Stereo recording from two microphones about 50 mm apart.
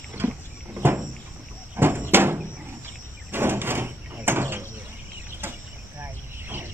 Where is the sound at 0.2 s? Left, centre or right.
Right.